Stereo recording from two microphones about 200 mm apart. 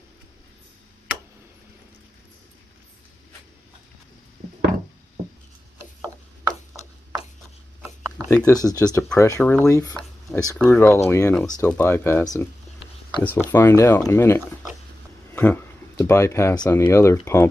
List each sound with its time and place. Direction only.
8.3 s speech: 10° left (ahead or behind)
9.9 s a sound: 10° left (ahead or behind)
10.7 s speech: 15° left (ahead or behind)